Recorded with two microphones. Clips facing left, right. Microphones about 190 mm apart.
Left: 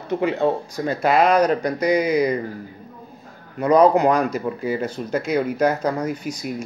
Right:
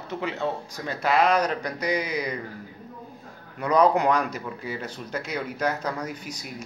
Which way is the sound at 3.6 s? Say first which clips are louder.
Left 6 dB; 50° left (ahead or behind).